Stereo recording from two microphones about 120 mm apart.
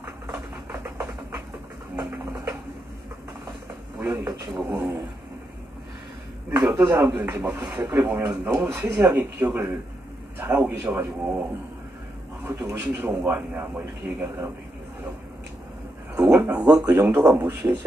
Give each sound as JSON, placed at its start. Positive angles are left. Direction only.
{"t": 0.0, "sound": "a sound", "side_deg": -20}
{"t": 4.0, "sound": "a man's voice", "side_deg": -15}
{"t": 6.5, "sound": "speech", "side_deg": -20}
{"t": 12.4, "sound": "speech", "side_deg": -25}
{"t": 16.2, "sound": "a sound", "side_deg": -15}
{"t": 16.6, "sound": "speech", "side_deg": -25}